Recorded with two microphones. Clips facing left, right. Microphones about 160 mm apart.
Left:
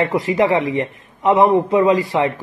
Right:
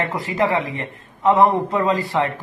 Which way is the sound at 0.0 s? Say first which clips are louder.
Left 5 dB; 20° left (ahead or behind).